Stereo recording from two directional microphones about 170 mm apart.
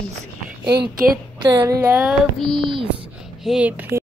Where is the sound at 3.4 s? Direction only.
5° right (ahead or behind).